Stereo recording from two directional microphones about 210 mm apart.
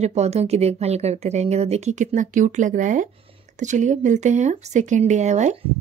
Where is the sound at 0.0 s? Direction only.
30° right (ahead or behind).